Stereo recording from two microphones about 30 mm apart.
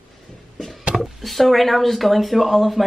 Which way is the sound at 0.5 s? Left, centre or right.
Centre.